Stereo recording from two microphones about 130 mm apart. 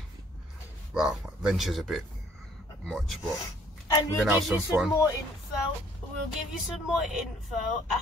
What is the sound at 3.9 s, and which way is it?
Speech, 25° left (ahead or behind).